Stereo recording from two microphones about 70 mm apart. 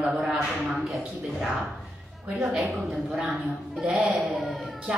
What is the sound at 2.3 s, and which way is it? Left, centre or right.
Child singing, centre.